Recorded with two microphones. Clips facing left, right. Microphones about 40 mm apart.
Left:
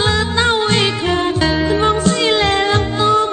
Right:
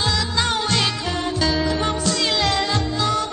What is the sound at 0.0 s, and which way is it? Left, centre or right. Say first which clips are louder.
Music: left 6 dB; left.